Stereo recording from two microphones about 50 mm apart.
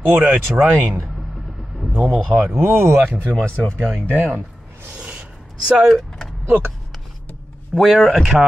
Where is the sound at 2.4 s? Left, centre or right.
Right.